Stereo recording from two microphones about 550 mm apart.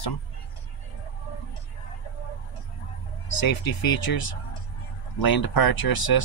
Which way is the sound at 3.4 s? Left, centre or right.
Left.